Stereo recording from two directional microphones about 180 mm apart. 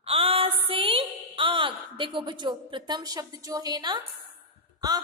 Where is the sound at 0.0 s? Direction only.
30° right (ahead or behind).